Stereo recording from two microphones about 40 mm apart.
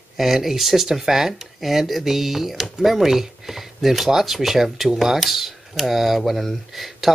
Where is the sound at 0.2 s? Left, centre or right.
Centre.